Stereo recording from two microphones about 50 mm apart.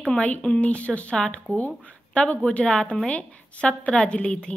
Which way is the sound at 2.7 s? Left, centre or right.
Centre.